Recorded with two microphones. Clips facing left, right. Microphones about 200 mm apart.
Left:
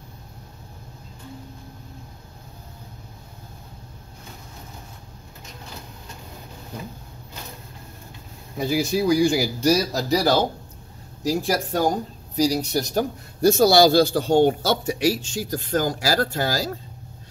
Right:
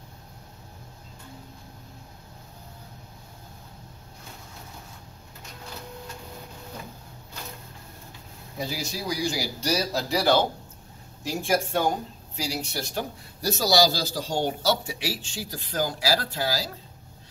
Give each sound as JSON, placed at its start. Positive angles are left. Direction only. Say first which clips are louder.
{"t": 8.5, "sound": "a man's voice", "louder": "left 10 dB", "side_deg": 55}
{"t": 11.4, "sound": "a man's voice", "louder": "right 1 dB", "side_deg": 35}